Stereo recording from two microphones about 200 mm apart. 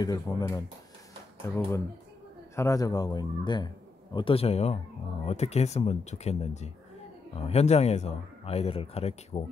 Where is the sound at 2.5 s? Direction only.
15° left (ahead or behind).